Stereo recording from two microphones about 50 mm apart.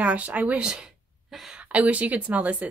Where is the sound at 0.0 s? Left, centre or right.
Right.